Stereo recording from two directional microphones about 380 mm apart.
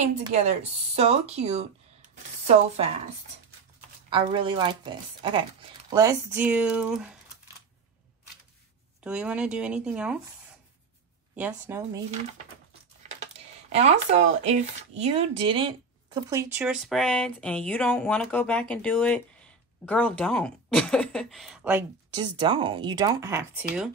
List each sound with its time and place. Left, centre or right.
0.0 s speech: centre
4.1 s speech: centre
9.0 s speech: centre
11.3 s speech: centre
13.1 s speech: centre